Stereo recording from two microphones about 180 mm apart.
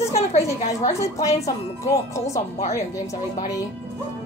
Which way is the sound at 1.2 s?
35° left (ahead or behind).